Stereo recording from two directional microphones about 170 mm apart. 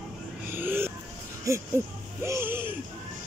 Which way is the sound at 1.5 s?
20° right (ahead or behind).